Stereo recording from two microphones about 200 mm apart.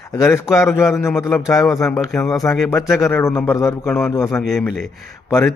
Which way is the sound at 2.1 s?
Centre (ahead or behind).